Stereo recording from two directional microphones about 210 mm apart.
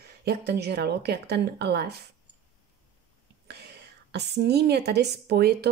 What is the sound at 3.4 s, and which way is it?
A woman's voice, 50° right (ahead or behind).